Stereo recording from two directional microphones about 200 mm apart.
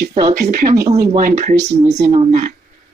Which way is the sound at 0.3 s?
50° right (ahead or behind).